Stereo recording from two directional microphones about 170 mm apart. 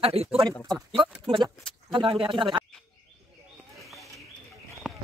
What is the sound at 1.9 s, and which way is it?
Speech, 30° right (ahead or behind).